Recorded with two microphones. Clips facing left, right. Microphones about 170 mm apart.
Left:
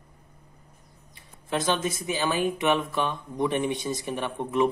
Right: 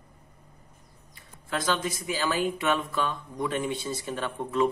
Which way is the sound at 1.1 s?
20° left (ahead or behind).